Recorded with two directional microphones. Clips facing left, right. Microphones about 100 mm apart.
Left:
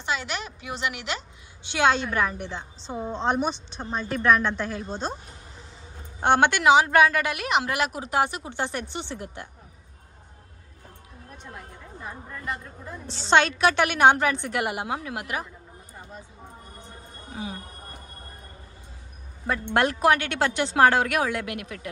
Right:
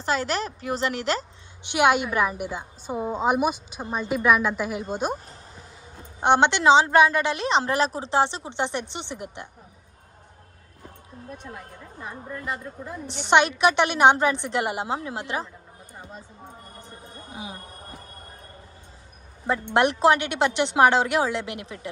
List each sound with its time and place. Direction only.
0.0 s a woman's voice: 40° right (ahead or behind)
1.7 s a woman's voice: 15° right (ahead or behind)
6.2 s a woman's voice: 20° right (ahead or behind)
13.0 s a woman's voice: 15° right (ahead or behind)
17.3 s a sound: 15° right (ahead or behind)
19.4 s a woman's voice: 20° right (ahead or behind)